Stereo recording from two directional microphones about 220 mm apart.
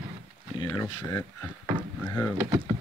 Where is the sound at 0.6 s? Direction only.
15° left (ahead or behind).